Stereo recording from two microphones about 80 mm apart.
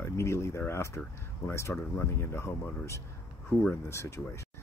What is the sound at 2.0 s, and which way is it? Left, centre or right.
Speech, left.